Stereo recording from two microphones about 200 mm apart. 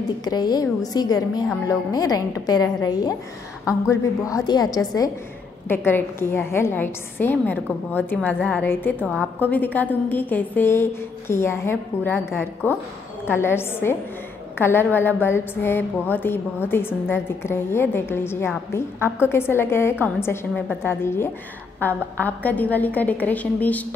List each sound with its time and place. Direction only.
0.2 s a woman's voice: 20° left (ahead or behind)